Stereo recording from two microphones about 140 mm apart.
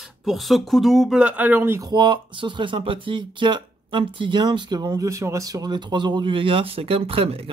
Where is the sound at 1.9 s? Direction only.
35° right (ahead or behind).